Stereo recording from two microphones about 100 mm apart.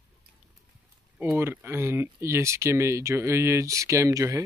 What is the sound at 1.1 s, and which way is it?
Speech, 20° right (ahead or behind).